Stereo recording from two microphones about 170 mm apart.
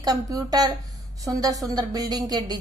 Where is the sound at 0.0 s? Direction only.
20° right (ahead or behind).